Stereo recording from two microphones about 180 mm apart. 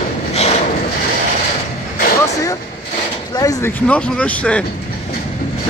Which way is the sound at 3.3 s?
20° left (ahead or behind).